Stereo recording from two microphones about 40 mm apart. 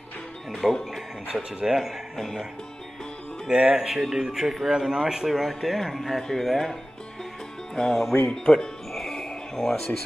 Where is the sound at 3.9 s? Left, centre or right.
Centre.